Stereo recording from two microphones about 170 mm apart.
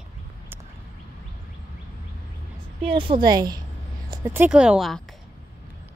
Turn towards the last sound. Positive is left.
turn(degrees=0)  # may be behind; listen again after turning